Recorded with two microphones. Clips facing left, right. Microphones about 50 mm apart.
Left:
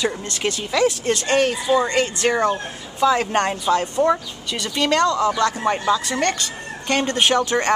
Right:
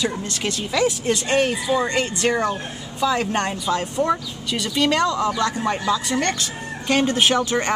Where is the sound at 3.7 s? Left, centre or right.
Left.